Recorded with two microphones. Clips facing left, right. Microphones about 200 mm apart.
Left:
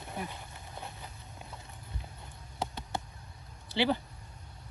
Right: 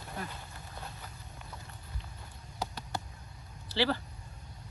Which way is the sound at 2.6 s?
25° left (ahead or behind).